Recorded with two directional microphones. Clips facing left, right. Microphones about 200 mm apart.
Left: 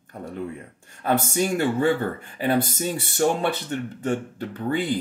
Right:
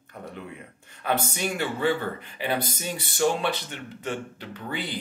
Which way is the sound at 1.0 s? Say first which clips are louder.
Left 5 dB; 45° left (ahead or behind).